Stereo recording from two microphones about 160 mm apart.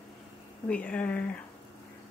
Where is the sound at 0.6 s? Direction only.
10° left (ahead or behind).